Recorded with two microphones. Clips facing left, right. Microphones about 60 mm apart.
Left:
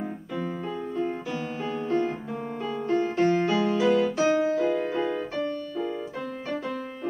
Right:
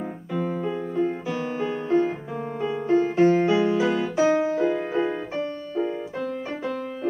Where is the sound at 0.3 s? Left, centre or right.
Centre.